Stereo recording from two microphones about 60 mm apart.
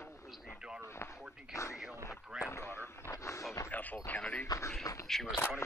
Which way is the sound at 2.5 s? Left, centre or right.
Left.